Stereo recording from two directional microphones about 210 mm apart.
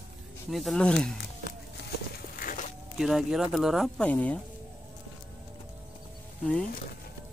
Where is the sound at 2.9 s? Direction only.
Centre (ahead or behind).